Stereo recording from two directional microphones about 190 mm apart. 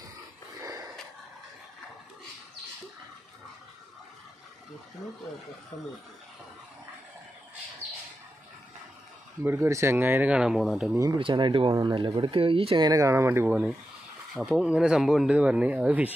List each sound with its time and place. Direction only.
9.4 s speech: 15° right (ahead or behind)
11.1 s speech: 25° right (ahead or behind); by 16.1 s 10° right (ahead or behind)